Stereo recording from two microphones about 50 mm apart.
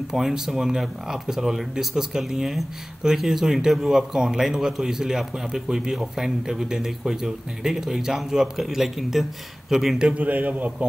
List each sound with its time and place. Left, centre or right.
0.1 s speech: centre
10.0 s a man's voice: right